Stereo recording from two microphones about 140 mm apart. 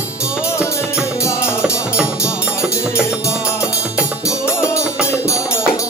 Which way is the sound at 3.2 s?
20° left (ahead or behind).